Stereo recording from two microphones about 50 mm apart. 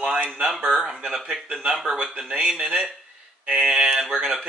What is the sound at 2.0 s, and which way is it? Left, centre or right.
Speech, right.